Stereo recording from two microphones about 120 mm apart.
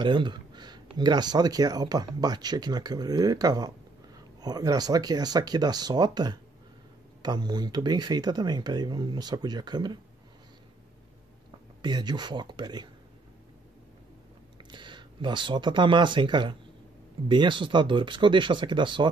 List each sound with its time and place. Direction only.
0.0 s speech: 40° right (ahead or behind)
11.8 s speech: 40° right (ahead or behind)
14.6 s speech: 40° right (ahead or behind)